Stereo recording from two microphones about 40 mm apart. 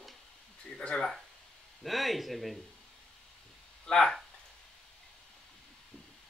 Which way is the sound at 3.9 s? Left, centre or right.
Centre.